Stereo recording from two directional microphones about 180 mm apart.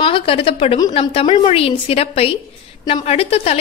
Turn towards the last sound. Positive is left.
turn(degrees=35)  # may be behind; listen again after turning